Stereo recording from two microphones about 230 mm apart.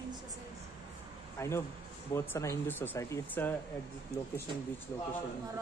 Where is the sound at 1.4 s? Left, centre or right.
Centre.